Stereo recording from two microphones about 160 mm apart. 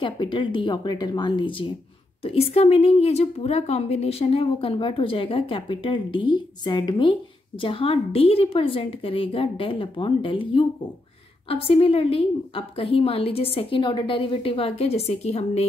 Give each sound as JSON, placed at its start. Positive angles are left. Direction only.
{"t": 0.0, "sound": "a woman's voice", "side_deg": 30}